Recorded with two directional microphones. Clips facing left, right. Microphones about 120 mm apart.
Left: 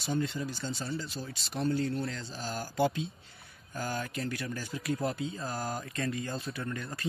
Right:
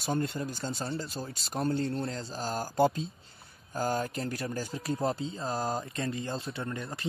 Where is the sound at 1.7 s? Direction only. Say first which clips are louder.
Right 1 dB; 30° right (ahead or behind).